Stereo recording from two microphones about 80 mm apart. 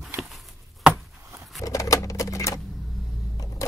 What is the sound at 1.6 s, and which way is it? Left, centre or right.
Typewriter, left.